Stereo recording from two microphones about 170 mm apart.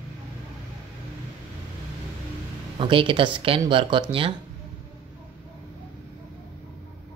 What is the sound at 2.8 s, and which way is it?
Speech, 30° right (ahead or behind).